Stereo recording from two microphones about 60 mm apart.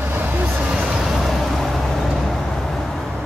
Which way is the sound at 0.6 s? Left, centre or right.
Centre.